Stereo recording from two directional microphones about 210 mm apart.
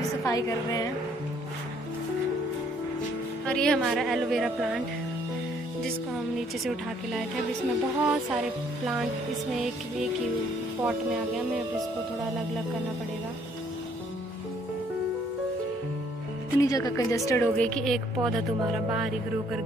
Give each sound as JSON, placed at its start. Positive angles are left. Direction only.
{"t": 0.2, "sound": "speech", "side_deg": 15}
{"t": 3.4, "sound": "a woman's voice", "side_deg": 5}
{"t": 10.8, "sound": "a woman's voice", "side_deg": -5}
{"t": 16.5, "sound": "a woman's voice", "side_deg": 15}